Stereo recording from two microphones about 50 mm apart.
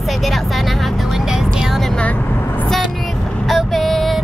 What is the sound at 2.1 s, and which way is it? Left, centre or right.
Vehicle, left.